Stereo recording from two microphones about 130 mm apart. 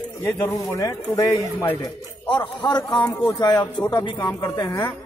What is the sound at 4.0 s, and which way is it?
Speech, 35° left (ahead or behind).